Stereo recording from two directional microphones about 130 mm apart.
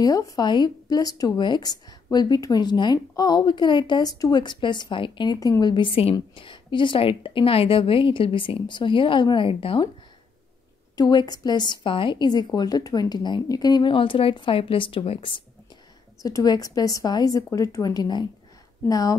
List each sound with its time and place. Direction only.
0.0 s speech: 30° left (ahead or behind); by 9.8 s 45° left (ahead or behind)
11.0 s speech: 35° left (ahead or behind)
16.2 s a woman's voice: 25° left (ahead or behind)